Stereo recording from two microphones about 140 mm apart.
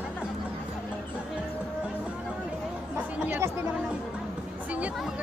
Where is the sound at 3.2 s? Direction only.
15° right (ahead or behind).